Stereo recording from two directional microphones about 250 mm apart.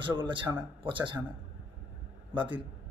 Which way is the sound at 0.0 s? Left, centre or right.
Centre.